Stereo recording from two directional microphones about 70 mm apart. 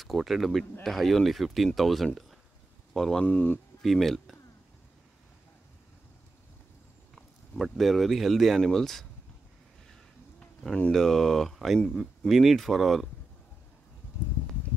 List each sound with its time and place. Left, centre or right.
0.0 s speech: centre
3.3 s speech: left
3.8 s speech: centre
7.6 s speech: centre
10.4 s a sound: centre
10.9 s speech: centre